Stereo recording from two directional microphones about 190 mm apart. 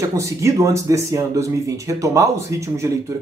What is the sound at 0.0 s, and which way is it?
Speech, 15° right (ahead or behind).